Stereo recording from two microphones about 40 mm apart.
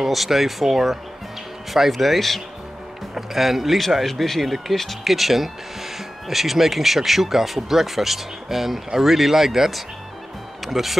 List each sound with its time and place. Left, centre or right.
0.0 s speech: centre